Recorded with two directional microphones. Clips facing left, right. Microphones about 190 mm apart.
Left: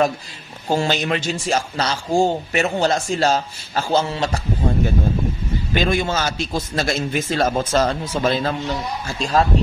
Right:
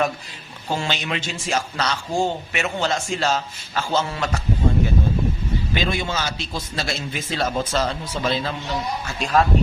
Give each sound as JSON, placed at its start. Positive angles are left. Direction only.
{"t": 0.7, "sound": "a man's voice", "side_deg": 40}
{"t": 5.8, "sound": "a man's voice", "side_deg": 50}
{"t": 9.0, "sound": "a man's voice", "side_deg": 30}